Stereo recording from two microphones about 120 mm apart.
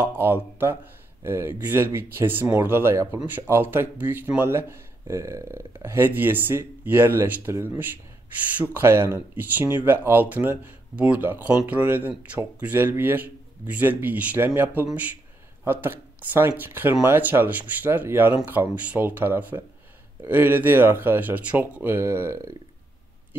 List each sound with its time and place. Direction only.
0.0 s speech: 15° right (ahead or behind)